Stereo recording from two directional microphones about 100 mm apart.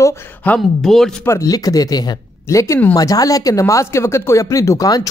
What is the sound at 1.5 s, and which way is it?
A man's voice, 35° left (ahead or behind).